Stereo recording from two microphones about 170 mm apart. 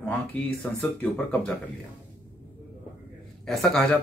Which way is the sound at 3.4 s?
Centre (ahead or behind).